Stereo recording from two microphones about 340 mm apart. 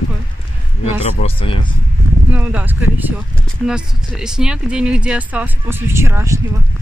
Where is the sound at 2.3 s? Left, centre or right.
Centre.